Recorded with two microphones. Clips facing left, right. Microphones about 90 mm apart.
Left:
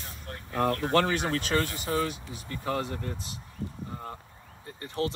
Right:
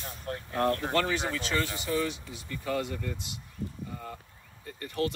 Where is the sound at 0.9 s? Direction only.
70° left (ahead or behind).